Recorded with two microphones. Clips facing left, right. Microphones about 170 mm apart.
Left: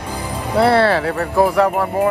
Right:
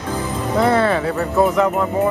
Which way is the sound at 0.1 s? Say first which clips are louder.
Right 3 dB; 10° left (ahead or behind).